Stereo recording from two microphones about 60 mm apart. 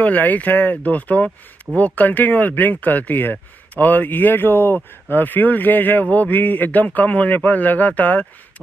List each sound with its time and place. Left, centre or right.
0.0 s a man's voice: left